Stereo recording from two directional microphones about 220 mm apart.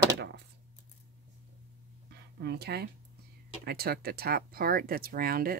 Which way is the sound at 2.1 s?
50° right (ahead or behind).